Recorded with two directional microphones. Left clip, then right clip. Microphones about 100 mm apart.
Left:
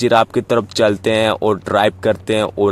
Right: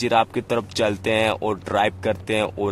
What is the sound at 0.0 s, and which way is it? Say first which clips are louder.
Speech: left 6 dB; 50° left (ahead or behind).